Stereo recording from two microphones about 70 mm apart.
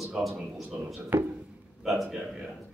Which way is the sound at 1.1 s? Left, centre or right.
Right.